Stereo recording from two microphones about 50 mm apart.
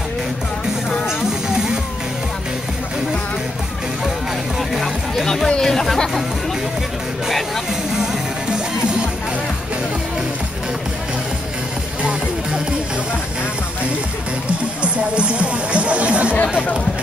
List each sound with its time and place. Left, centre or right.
1.0 s music: centre
4.6 s music: centre
5.2 s music: centre
7.9 s music: centre
12.0 s music: right
14.8 s music: right